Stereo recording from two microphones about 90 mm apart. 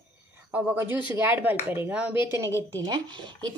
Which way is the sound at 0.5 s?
20° right (ahead or behind).